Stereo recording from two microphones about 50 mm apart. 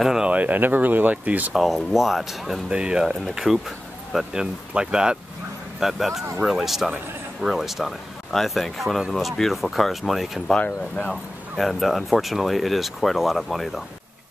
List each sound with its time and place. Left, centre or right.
0.0 s speech: centre
0.3 s speech: right
1.5 s speech: centre
2.7 s speech: centre
5.8 s speech: centre
11.5 s speech: centre